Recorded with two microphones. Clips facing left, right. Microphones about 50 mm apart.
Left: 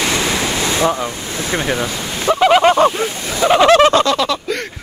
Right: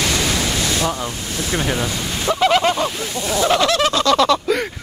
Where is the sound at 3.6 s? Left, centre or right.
Left.